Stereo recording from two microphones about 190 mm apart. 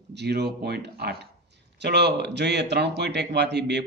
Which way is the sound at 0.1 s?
60° right (ahead or behind).